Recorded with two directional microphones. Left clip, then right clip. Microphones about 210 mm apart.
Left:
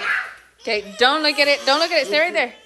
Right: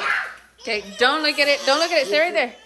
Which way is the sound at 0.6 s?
10° right (ahead or behind).